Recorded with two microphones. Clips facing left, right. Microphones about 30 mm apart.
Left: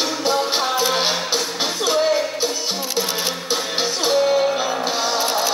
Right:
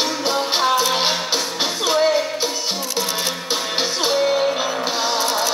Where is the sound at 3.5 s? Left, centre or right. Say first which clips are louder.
Even; centre.